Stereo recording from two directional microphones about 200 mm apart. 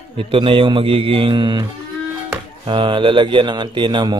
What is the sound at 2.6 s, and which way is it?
Speech, 25° right (ahead or behind).